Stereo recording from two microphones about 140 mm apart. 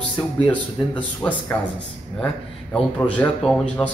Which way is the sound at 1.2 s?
10° left (ahead or behind).